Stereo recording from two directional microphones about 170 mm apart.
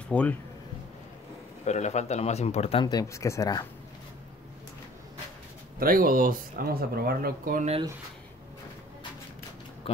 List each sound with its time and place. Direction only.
0.1 s speech: 10° left (ahead or behind)
1.6 s speech: 40° left (ahead or behind)
2.8 s speech: 20° left (ahead or behind)
5.8 s speech: 55° right (ahead or behind)